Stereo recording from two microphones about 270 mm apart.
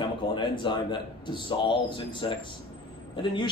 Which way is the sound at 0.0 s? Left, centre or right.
Centre.